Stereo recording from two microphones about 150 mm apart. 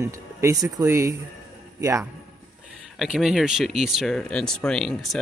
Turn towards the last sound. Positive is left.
turn(degrees=0)  # may be behind; listen again after turning